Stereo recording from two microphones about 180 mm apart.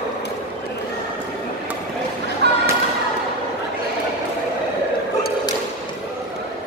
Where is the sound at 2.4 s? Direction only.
65° right (ahead or behind).